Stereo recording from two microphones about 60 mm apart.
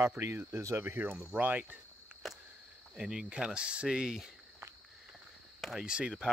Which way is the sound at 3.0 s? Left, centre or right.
Centre.